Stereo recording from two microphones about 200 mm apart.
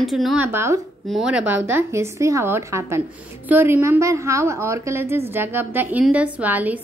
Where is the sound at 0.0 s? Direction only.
Centre (ahead or behind).